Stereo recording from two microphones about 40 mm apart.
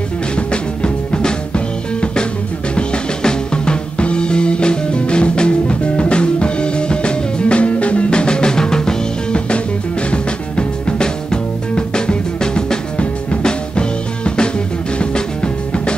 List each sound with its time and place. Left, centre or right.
0.4 s music: left